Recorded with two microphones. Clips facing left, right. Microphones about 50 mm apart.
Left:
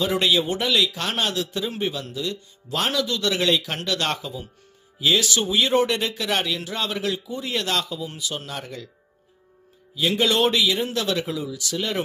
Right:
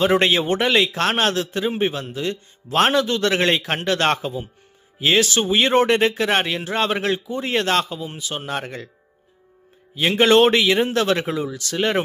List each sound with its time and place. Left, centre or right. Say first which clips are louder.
0.0 s speech: right 4 dB; right
9.9 s speech: right 6 dB; right